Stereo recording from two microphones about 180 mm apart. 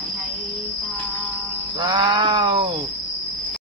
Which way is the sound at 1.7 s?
25° right (ahead or behind).